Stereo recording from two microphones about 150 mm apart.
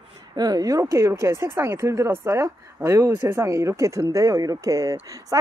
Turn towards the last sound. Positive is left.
turn(degrees=-20)  # may be behind; listen again after turning